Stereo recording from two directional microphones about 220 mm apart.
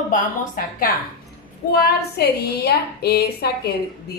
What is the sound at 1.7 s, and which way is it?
A woman's voice, 45° left (ahead or behind).